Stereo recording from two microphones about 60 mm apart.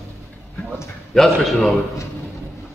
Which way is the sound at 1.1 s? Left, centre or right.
Centre.